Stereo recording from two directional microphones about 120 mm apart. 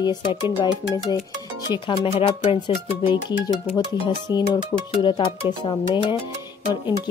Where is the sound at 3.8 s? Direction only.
35° left (ahead or behind).